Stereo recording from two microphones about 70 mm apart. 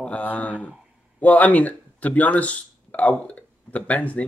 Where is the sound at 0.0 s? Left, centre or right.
Left.